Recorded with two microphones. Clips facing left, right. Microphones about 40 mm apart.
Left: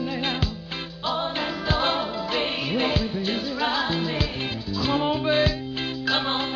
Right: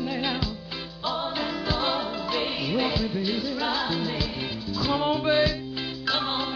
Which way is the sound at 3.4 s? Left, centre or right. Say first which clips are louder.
Left 2 dB; centre.